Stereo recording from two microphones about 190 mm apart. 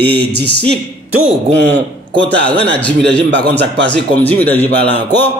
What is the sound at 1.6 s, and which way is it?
A man's voice, 65° right (ahead or behind).